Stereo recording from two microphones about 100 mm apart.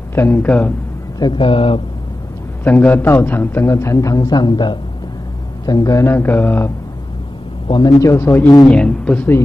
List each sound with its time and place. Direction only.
0.1 s speech: 20° left (ahead or behind)
1.2 s speech: 55° left (ahead or behind)
2.6 s a man's voice: 20° left (ahead or behind); by 4.7 s 50° left (ahead or behind)
5.7 s a man's voice: 35° left (ahead or behind)
6.0 s a man's voice: 20° left (ahead or behind)
7.6 s a man's voice: 50° left (ahead or behind)
8.0 s a man's voice: 30° left (ahead or behind)
8.6 s speech: 10° left (ahead or behind)